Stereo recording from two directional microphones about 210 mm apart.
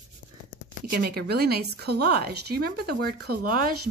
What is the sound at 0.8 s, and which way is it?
A woman's voice, 45° right (ahead or behind).